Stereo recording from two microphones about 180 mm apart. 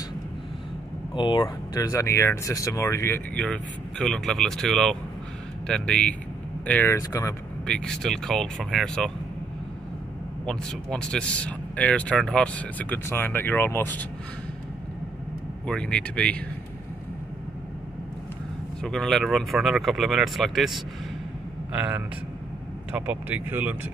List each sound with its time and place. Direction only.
1.1 s speech: 25° left (ahead or behind)
7.6 s speech: 5° left (ahead or behind)
10.4 s speech: 5° left (ahead or behind)
15.6 s speech: 5° left (ahead or behind)
18.8 s speech: 5° left (ahead or behind)